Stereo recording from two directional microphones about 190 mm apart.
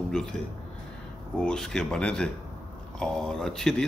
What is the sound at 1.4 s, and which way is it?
Speech, 5° left (ahead or behind).